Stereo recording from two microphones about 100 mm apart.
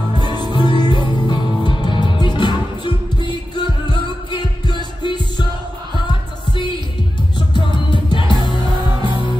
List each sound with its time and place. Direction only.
0.2 s music: 45° left (ahead or behind)
7.3 s music: 50° left (ahead or behind)